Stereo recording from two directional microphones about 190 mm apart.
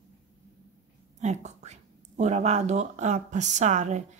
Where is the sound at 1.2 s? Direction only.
35° right (ahead or behind).